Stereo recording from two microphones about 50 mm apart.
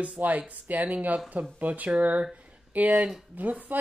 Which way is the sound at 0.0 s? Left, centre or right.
Right.